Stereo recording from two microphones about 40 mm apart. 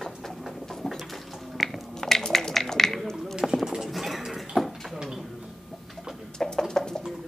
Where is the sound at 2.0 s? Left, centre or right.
Centre.